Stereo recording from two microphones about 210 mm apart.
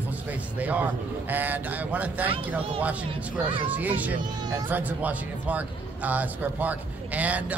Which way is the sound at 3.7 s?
10° right (ahead or behind).